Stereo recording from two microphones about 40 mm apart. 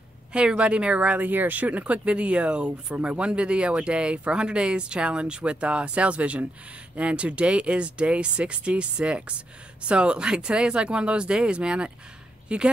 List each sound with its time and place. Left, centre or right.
0.3 s speech: right
1.2 s speech: right